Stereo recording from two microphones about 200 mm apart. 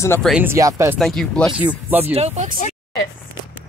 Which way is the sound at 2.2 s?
35° right (ahead or behind).